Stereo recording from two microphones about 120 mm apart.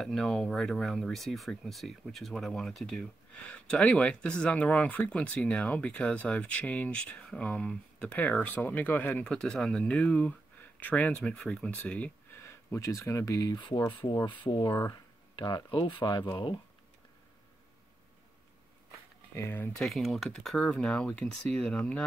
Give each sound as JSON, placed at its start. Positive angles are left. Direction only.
{"t": 0.0, "sound": "speech", "side_deg": 5}
{"t": 12.4, "sound": "speech", "side_deg": 25}
{"t": 14.4, "sound": "speech", "side_deg": 40}
{"t": 19.3, "sound": "speech", "side_deg": 20}
{"t": 19.8, "sound": "speech", "side_deg": 0}